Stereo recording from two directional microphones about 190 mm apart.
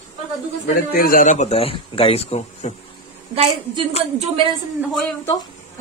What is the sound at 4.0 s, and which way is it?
Speech, 30° right (ahead or behind).